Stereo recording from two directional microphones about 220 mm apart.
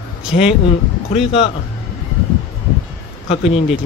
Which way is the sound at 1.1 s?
25° left (ahead or behind).